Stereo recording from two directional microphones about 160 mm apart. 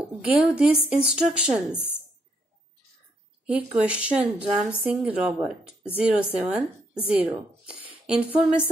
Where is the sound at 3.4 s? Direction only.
5° right (ahead or behind).